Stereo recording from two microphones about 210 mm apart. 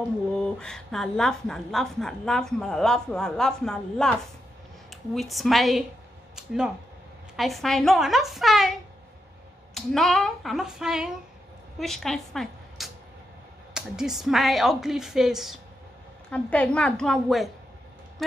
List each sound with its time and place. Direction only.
0.4 s a woman's voice: 5° left (ahead or behind)
6.3 s a sound: 5° right (ahead or behind)
7.3 s a woman's voice: centre (ahead or behind)
9.8 s a woman's voice: centre (ahead or behind)